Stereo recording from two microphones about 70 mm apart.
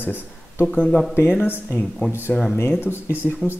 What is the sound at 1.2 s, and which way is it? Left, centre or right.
Speech, left.